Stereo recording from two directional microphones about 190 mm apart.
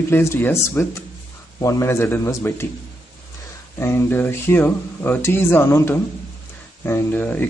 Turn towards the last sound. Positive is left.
turn(degrees=10)  # may be behind; listen again after turning